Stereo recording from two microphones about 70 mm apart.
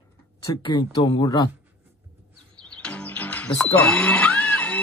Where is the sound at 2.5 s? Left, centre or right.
Centre.